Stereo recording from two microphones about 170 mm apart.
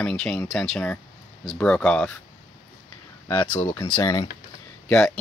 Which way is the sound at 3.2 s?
25° left (ahead or behind).